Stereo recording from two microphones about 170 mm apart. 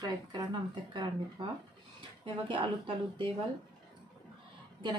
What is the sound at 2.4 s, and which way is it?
Speech, 30° right (ahead or behind).